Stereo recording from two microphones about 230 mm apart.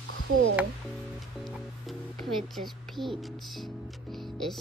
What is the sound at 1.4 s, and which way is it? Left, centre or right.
Speech, centre.